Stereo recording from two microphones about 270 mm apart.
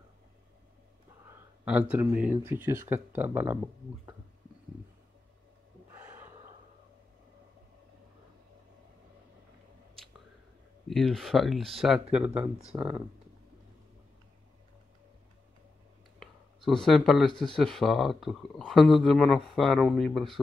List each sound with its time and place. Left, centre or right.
1.6 s speech: centre
10.9 s speech: centre
12.6 s speech: centre
16.2 s a sound: centre
17.6 s speech: centre